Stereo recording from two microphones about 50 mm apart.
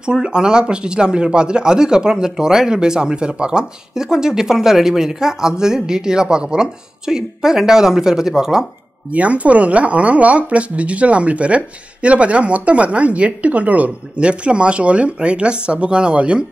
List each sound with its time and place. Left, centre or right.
0.0 s speech: centre
9.1 s speech: right